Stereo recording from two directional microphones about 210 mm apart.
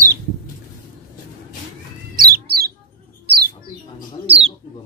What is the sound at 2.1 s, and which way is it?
Bird, 45° right (ahead or behind).